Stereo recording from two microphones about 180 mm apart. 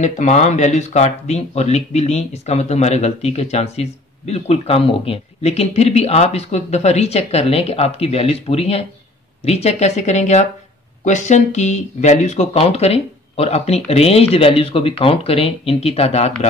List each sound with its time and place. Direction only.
0.0 s speech: 40° left (ahead or behind)